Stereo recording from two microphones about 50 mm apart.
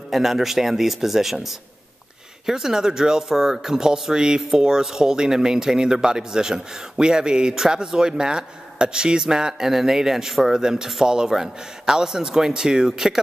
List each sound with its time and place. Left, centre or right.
0.1 s speech: centre